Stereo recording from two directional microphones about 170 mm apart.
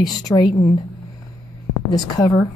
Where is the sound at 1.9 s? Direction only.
20° left (ahead or behind).